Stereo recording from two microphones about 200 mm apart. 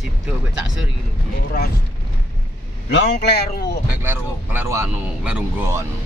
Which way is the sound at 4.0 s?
10° right (ahead or behind).